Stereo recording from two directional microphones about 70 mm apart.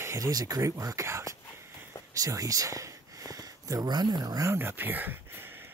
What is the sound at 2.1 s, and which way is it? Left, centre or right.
Speech, right.